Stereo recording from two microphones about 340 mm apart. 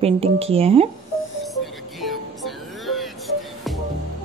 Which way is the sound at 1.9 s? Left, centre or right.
Centre.